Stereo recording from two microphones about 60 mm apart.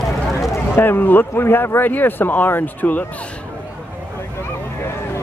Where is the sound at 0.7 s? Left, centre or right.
Left.